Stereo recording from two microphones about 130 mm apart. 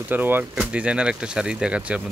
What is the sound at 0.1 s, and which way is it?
Speech, 15° right (ahead or behind).